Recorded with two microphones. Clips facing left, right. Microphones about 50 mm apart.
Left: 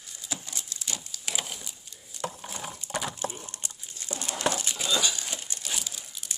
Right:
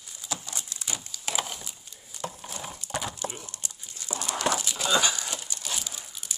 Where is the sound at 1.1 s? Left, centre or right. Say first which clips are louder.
Right 5 dB; centre.